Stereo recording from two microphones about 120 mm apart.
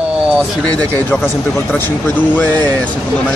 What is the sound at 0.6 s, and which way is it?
Speech, 10° left (ahead or behind).